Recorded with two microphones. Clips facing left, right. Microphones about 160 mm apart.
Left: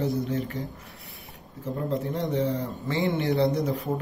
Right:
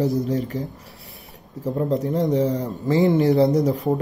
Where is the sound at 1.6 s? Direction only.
40° right (ahead or behind).